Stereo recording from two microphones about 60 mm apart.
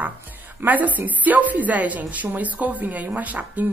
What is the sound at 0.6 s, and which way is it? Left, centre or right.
Speech, right.